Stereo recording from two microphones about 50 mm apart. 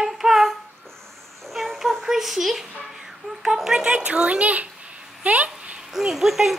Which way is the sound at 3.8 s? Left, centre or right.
Right.